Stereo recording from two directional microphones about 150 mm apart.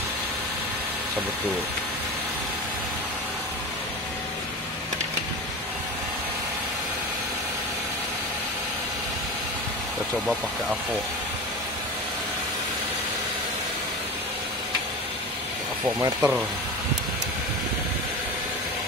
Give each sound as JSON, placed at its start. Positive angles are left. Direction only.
{"t": 16.2, "sound": "speech", "side_deg": -5}